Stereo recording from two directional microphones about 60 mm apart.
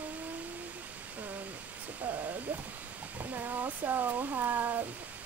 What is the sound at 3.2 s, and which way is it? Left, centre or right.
Speech, right.